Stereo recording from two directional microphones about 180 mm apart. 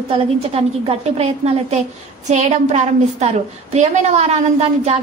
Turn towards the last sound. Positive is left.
turn(degrees=-35)  # may be behind; listen again after turning